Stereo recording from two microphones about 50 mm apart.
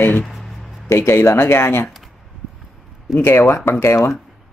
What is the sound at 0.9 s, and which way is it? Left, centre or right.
Speech, left.